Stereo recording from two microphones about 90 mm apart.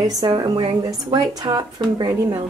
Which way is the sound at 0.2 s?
60° right (ahead or behind).